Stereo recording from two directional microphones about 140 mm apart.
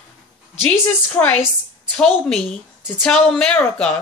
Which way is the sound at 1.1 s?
10° left (ahead or behind).